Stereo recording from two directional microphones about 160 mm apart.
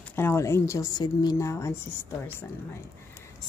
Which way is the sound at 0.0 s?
15° left (ahead or behind).